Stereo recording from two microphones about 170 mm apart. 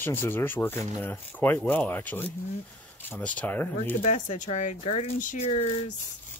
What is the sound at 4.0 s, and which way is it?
Speech, 45° left (ahead or behind).